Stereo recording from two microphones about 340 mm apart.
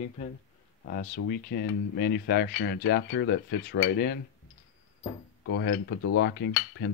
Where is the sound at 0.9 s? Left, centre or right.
Left.